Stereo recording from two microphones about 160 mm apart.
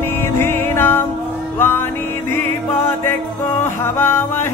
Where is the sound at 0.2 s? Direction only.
15° left (ahead or behind).